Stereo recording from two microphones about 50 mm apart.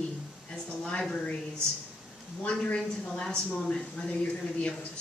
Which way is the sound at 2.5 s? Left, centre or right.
Centre.